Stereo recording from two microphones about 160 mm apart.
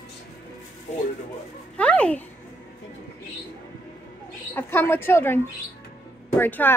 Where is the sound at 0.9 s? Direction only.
50° left (ahead or behind).